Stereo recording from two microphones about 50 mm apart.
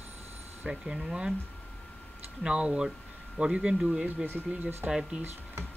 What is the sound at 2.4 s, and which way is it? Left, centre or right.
Speech, centre.